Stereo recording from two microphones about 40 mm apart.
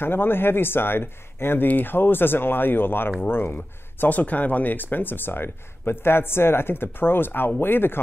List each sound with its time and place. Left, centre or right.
0.0 s speech: left
1.7 s speech: left
4.1 s speech: left